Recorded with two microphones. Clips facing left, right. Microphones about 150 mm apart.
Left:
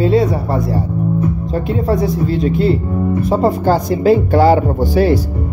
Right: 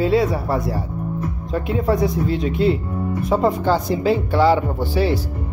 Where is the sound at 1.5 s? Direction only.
30° left (ahead or behind).